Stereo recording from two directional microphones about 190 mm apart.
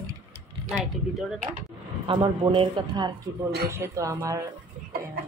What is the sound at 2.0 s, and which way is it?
Speech, 25° right (ahead or behind).